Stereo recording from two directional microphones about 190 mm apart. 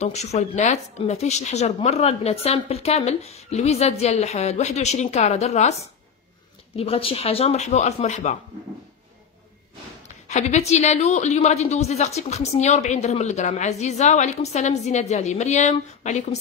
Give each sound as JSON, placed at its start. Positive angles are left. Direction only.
{"t": 0.0, "sound": "a woman's voice", "side_deg": 35}
{"t": 10.0, "sound": "a woman's voice", "side_deg": 35}